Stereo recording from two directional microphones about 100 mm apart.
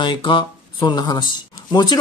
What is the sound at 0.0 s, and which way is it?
Speech, 50° left (ahead or behind).